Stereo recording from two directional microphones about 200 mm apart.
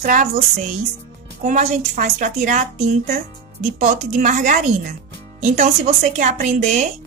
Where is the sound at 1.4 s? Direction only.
35° right (ahead or behind).